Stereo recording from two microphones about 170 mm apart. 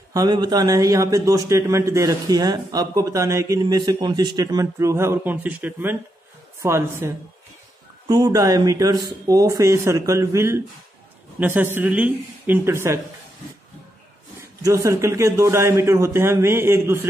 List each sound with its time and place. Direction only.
0.1 s a man's voice: 25° right (ahead or behind)
8.1 s a man's voice: 20° right (ahead or behind)
14.6 s a man's voice: 20° right (ahead or behind)